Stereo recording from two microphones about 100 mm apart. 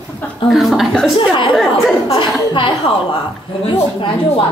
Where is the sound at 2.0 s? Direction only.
55° left (ahead or behind).